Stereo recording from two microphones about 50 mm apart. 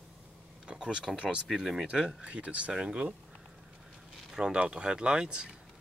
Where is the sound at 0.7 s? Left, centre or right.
Centre.